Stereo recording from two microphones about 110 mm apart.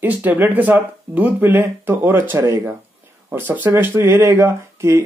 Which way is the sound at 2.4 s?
30° right (ahead or behind).